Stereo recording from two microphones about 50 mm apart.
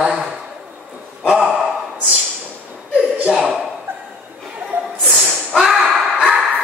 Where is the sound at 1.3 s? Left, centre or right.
Centre.